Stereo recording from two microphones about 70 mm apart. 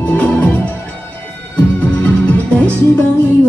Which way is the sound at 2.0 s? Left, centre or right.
Left.